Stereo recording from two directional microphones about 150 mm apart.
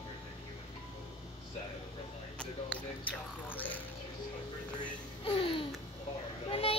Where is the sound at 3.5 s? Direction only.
10° left (ahead or behind).